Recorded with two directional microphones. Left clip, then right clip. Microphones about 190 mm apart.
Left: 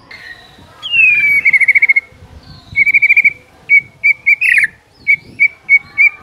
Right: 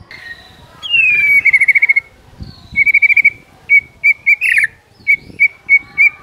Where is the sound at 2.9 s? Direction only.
70° left (ahead or behind).